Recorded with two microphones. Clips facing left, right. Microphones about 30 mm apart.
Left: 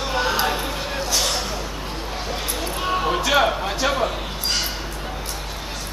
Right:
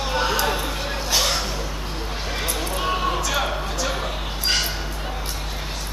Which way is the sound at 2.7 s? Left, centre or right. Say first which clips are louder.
Left 1 dB; centre.